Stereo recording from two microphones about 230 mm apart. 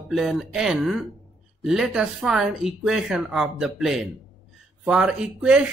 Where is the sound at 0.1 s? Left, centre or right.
Centre.